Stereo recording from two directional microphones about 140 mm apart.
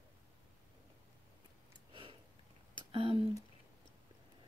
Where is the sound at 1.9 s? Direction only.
40° right (ahead or behind).